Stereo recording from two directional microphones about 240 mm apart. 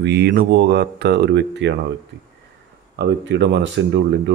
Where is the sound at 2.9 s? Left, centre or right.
Right.